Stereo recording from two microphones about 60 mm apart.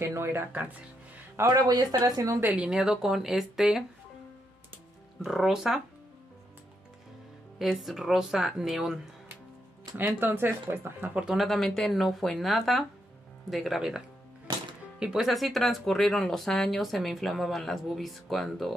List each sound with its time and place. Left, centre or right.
0.0 s speech: right
1.4 s speech: right
2.4 s speech: right
2.7 s speech: centre
5.2 s speech: centre
7.5 s speech: centre
9.9 s speech: right
11.2 s speech: centre
15.2 s speech: centre